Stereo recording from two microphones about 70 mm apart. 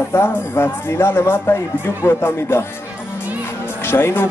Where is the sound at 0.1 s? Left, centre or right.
Left.